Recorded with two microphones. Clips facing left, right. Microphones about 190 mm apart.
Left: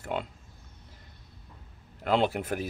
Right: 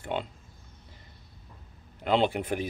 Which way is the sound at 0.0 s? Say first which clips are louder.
Right 1 dB; centre (ahead or behind).